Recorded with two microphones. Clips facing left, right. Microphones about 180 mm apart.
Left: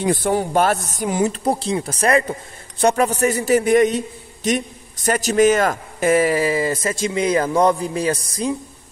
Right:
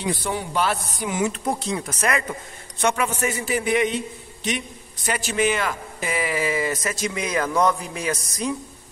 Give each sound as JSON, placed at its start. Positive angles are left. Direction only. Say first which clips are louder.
{"t": 0.0, "sound": "a man's voice", "louder": "left 7 dB", "side_deg": 50}